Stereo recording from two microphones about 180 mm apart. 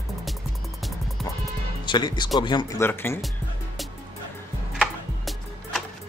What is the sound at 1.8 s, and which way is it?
Speech, 25° left (ahead or behind).